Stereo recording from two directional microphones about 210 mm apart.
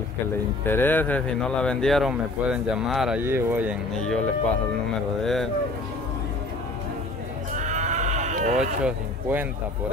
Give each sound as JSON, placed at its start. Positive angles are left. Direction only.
{"t": 0.7, "sound": "a man's voice", "side_deg": 10}
{"t": 7.5, "sound": "livestock", "side_deg": -35}
{"t": 8.8, "sound": "speech", "side_deg": -10}